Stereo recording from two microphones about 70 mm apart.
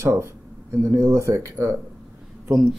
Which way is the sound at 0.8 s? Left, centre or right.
Right.